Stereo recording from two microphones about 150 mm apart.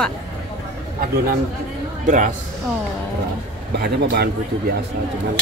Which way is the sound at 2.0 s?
60° right (ahead or behind).